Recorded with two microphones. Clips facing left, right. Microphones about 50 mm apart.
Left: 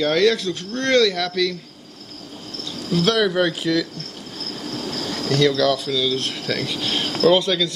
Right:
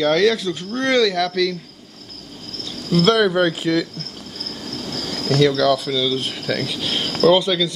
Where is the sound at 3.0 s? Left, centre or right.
Centre.